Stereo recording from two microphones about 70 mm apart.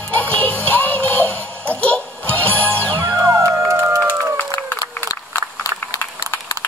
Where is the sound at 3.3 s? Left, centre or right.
Right.